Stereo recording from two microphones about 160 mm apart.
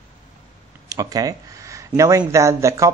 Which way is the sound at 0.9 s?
20° right (ahead or behind).